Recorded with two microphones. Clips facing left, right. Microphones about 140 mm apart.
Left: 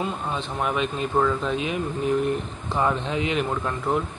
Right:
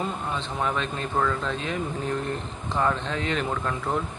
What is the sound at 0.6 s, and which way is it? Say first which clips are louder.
Speech: left 3 dB; 15° left (ahead or behind).